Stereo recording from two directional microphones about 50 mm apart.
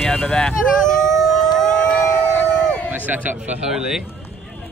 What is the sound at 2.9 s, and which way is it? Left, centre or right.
Speech, right.